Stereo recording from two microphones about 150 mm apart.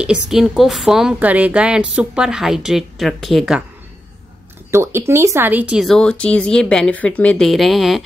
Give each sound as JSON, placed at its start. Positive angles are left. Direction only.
{"t": 0.0, "sound": "a woman's voice", "side_deg": -5}
{"t": 4.6, "sound": "speech", "side_deg": -15}
{"t": 5.9, "sound": "a woman's voice", "side_deg": 5}